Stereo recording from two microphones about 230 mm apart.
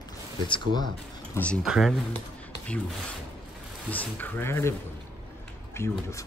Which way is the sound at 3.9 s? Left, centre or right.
Centre.